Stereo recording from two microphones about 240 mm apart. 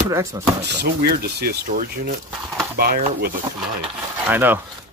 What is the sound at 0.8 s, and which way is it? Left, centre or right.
Speech, right.